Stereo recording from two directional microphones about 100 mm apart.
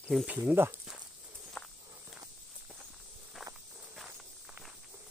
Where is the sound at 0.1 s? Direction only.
5° left (ahead or behind).